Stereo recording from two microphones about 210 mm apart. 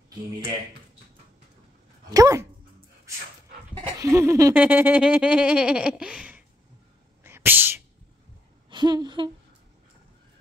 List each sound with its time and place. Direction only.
2.0 s speech: 15° right (ahead or behind)
3.7 s speech: 20° right (ahead or behind)
7.2 s sneeze: 10° right (ahead or behind)
8.6 s a sound: 20° right (ahead or behind)